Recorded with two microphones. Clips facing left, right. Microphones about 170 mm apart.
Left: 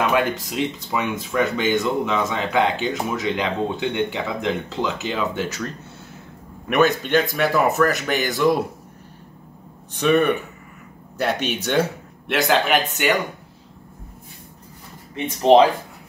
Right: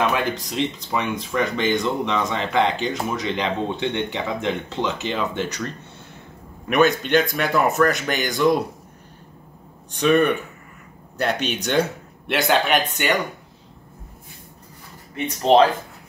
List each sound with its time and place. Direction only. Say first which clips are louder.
0.1 s speech: left 3 dB; 5° left (ahead or behind)
6.7 s speech: even; centre (ahead or behind)
9.9 s speech: even; centre (ahead or behind)
11.4 s speech: even; 5° left (ahead or behind)
15.4 s speech: left 2 dB; 15° left (ahead or behind)